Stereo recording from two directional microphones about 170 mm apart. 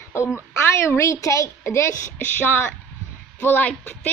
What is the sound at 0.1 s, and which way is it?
A woman's voice, 15° left (ahead or behind).